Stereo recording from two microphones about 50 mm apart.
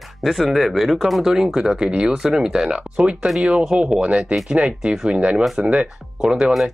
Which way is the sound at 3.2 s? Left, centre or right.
Centre.